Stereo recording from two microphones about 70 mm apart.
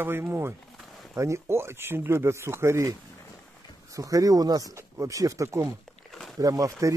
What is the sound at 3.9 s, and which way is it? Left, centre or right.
Speech, right.